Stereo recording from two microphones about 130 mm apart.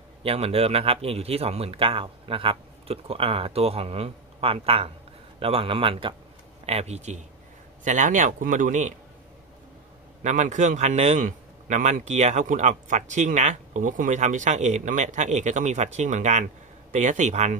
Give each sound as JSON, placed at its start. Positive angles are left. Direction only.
{"t": 0.2, "sound": "speech", "side_deg": -50}
{"t": 6.6, "sound": "speech", "side_deg": -55}
{"t": 7.8, "sound": "speech", "side_deg": -75}
{"t": 10.2, "sound": "a man's voice", "side_deg": -65}